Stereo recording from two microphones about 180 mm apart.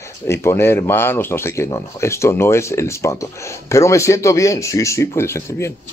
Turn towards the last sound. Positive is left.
turn(degrees=15)  # may be behind; listen again after turning